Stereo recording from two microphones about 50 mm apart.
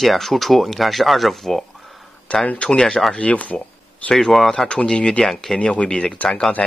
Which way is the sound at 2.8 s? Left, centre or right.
Centre.